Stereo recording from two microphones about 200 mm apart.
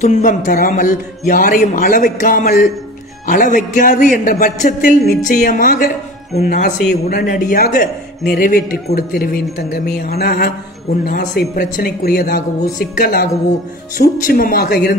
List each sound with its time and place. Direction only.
0.0 s a man's voice: 40° left (ahead or behind)